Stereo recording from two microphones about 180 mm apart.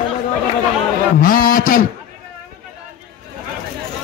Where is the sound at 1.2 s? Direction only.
50° left (ahead or behind).